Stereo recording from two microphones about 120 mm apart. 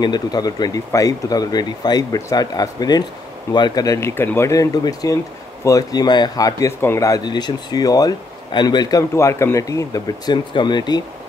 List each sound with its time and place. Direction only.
0.0 s speech: 35° left (ahead or behind)